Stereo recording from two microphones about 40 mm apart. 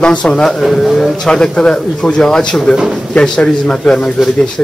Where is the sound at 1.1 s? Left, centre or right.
Centre.